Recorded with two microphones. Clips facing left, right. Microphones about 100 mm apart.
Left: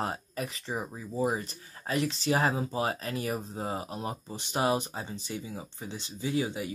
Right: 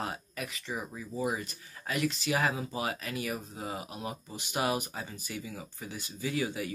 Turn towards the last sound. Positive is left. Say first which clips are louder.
# left 2 dB
turn(degrees=25)  # may be behind; listen again after turning